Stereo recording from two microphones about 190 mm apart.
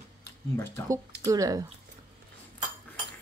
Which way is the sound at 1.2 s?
20° right (ahead or behind).